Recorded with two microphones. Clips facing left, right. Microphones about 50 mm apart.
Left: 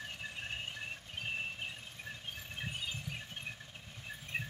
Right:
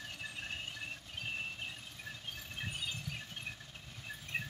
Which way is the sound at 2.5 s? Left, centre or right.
Centre.